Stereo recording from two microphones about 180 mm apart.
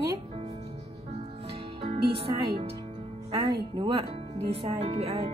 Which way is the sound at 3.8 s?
30° right (ahead or behind).